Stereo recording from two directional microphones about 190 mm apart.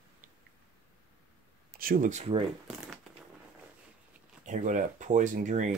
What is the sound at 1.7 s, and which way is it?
Speech, 50° right (ahead or behind).